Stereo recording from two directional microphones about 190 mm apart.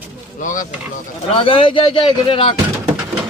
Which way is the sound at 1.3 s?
30° left (ahead or behind).